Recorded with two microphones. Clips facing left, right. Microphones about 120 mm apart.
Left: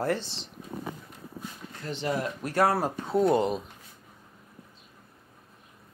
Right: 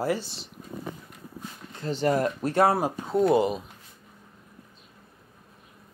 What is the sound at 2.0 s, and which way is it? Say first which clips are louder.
Speech: right 6 dB; 45° right (ahead or behind).